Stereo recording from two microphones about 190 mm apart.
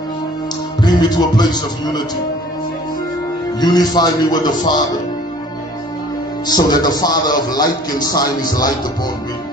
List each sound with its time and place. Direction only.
0.8 s a man's voice: 20° left (ahead or behind)
3.6 s a man's voice: 20° left (ahead or behind)
6.4 s a man's voice: 20° left (ahead or behind)